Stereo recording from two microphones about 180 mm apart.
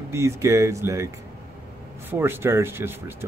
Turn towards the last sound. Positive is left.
turn(degrees=-15)  # may be behind; listen again after turning